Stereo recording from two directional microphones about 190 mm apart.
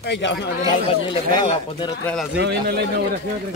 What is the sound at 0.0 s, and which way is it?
Speech, 65° left (ahead or behind).